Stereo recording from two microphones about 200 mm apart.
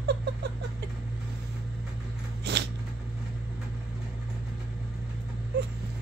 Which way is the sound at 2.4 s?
55° right (ahead or behind).